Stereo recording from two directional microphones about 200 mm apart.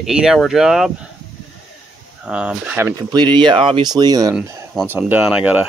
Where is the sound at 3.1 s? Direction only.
20° right (ahead or behind).